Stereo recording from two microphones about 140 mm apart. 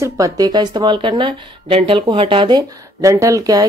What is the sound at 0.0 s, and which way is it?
Speech, 25° right (ahead or behind).